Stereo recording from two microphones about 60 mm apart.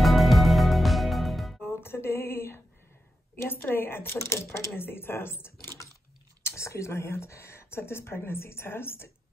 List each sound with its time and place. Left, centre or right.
0.0 s music: centre
1.6 s music: left
3.4 s speech: left
4.2 s speech: left
6.4 s speech: left